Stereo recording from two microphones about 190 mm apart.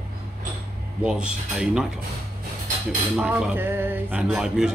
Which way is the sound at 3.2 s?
5° right (ahead or behind).